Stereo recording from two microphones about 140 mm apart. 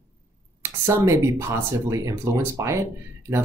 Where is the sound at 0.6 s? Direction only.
20° right (ahead or behind).